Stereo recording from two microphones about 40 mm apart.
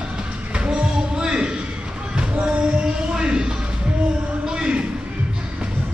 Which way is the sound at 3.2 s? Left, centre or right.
Centre.